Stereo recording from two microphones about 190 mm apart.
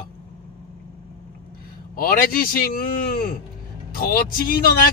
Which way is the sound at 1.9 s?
50° left (ahead or behind).